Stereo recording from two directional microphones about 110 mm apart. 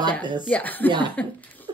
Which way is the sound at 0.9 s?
50° right (ahead or behind).